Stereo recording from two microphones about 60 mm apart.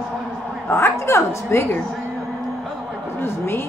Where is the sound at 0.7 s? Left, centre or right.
Left.